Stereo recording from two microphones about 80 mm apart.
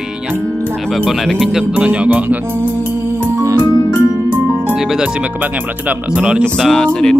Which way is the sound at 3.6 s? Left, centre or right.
Left.